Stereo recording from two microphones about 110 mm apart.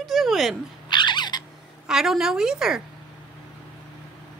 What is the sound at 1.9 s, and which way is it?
Speech, 5° right (ahead or behind).